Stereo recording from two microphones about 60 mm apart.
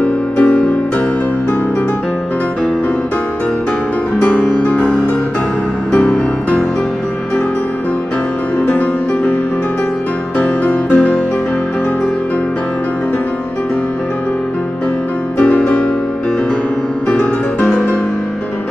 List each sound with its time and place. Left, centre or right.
0.0 s music: left
4.3 s music: centre
5.9 s music: left
10.4 s music: left
15.3 s music: centre
17.1 s music: left